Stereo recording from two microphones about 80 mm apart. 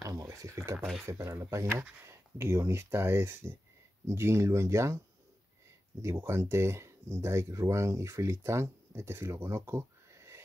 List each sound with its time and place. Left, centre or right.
0.0 s speech: right
6.0 s speech: right